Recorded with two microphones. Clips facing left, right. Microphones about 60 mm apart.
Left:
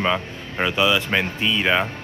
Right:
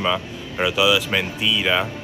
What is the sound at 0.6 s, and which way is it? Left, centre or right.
Speech, centre.